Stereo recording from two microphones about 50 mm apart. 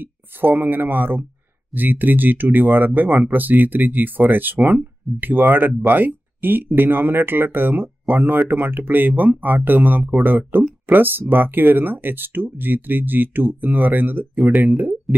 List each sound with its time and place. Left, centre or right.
0.0 s speech: right